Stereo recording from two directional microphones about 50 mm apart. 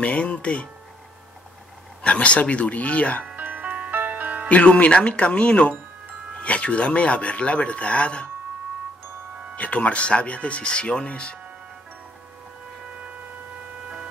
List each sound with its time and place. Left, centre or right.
0.0 s speech: left
2.0 s speech: left
3.3 s music: right
4.5 s speech: left
9.6 s speech: left